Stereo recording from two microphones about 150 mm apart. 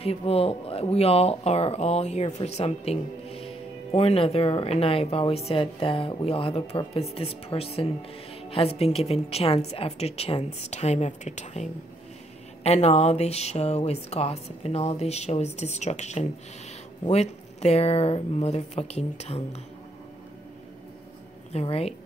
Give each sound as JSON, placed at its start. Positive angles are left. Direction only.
{"t": 0.0, "sound": "speech", "side_deg": 40}
{"t": 21.5, "sound": "speech", "side_deg": 45}